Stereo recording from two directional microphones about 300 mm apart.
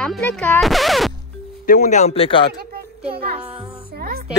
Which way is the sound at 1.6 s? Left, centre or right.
Left.